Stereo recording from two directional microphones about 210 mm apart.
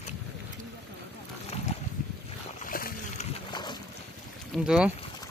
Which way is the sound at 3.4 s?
20° left (ahead or behind).